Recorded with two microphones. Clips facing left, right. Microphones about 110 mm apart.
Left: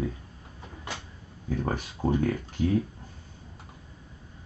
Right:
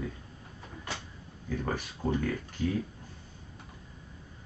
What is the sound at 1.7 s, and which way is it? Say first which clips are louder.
Speech: left 4 dB; 25° left (ahead or behind).